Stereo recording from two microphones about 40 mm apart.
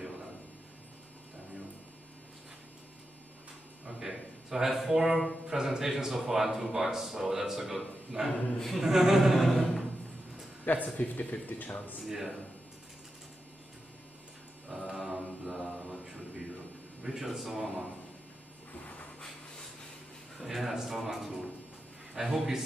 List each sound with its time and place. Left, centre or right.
3.8 s a sound: centre
5.5 s a man's voice: centre
8.5 s speech: centre
8.8 s a man's voice: centre
9.3 s a sound: centre
10.7 s speech: left
12.0 s speech: centre
14.7 s mantra: centre
17.0 s a man's voice: centre
20.3 s a man's voice: centre